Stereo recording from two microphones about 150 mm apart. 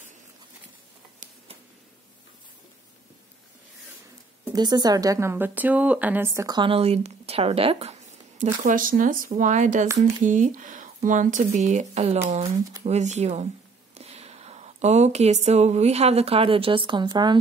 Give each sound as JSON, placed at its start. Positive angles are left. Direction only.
{"t": 4.5, "sound": "a woman's voice", "side_deg": -30}
{"t": 8.5, "sound": "speech", "side_deg": -60}